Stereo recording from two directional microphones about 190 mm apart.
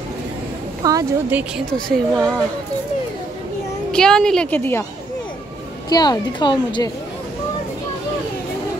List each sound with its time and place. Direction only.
0.8 s a woman's voice: 20° right (ahead or behind)
1.7 s a woman's voice: 5° left (ahead or behind)
3.9 s a woman's voice: 5° left (ahead or behind)
5.9 s speech: 20° left (ahead or behind)